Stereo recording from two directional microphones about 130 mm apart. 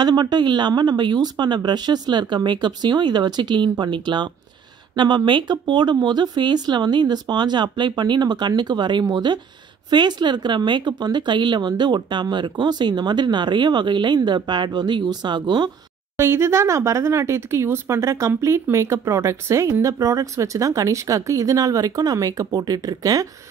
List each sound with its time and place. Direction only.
0.0 s speech: 35° right (ahead or behind)
16.2 s speech: 20° right (ahead or behind)